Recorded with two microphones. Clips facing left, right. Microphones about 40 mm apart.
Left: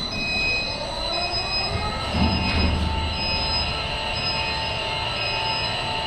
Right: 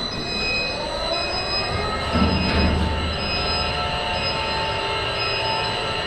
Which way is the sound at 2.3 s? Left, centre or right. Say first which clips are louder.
Right 3 dB; centre.